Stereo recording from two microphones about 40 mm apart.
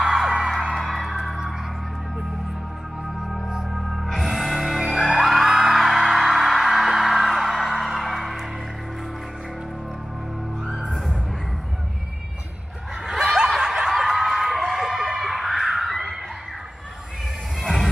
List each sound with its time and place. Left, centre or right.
0.0 s music: centre
3.2 s music: centre
3.4 s music: centre
3.9 s music: centre
13.0 s snicker: centre
13.8 s a sound: centre
17.6 s music: centre